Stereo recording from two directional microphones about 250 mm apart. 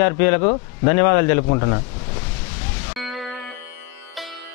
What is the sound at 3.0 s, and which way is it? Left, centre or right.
Music, centre.